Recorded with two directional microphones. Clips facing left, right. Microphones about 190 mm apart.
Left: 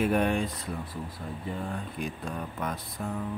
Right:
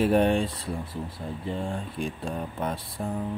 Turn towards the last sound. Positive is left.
turn(degrees=-30)  # may be behind; listen again after turning